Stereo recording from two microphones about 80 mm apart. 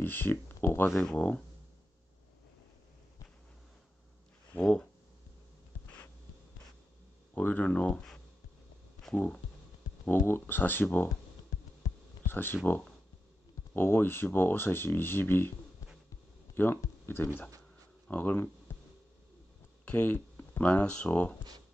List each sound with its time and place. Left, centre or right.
0.0 s speech: left
1.1 s speech: centre
4.5 s speech: left
7.3 s speech: centre
9.1 s speech: left
12.3 s speech: left
13.7 s speech: left
16.5 s speech: left
19.8 s speech: left